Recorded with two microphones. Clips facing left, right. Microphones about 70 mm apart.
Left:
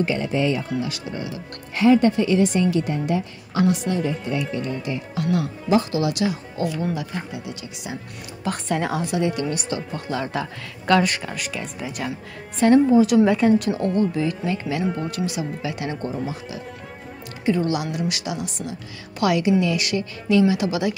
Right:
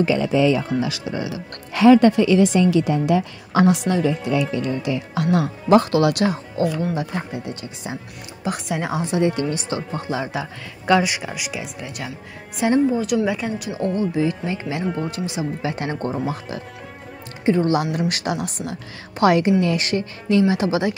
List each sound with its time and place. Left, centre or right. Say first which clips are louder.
0.7 s speech: right 4 dB; right
6.2 s speech: right 3 dB; right
8.5 s speech: left 1 dB; centre
9.0 s speech: right 3 dB; right
10.0 s speech: right 1 dB; centre
12.8 s speech: left 4 dB; centre
13.9 s speech: right 1 dB; right
17.5 s speech: right 3 dB; right
17.9 s speech: right 3 dB; right
19.1 s speech: right 3 dB; right